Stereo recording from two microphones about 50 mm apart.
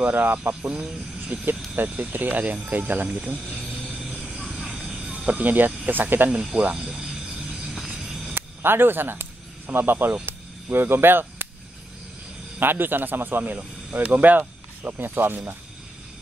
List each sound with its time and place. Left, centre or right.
0.0 s speech: right
4.0 s a sound: centre
5.1 s cricket: right
5.9 s speech: right
6.5 s speech: right
6.8 s speech: centre
8.1 s a sound: centre
8.4 s speech: right
10.2 s a sound: right
12.5 s a man's voice: right